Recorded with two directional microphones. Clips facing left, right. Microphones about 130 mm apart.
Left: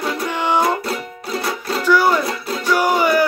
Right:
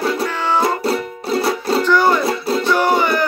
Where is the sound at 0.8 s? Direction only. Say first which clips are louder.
Right 6 dB; 30° right (ahead or behind).